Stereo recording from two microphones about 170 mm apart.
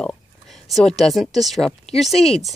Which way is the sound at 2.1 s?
35° left (ahead or behind).